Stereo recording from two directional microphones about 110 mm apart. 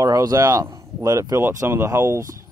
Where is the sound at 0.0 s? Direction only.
35° right (ahead or behind).